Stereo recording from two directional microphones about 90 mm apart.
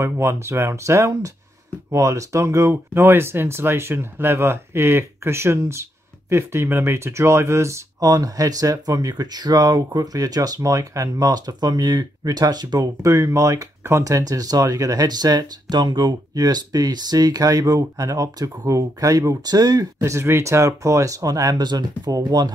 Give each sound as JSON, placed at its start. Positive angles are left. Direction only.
{"t": 0.0, "sound": "speech", "side_deg": -30}
{"t": 20.0, "sound": "speech", "side_deg": -30}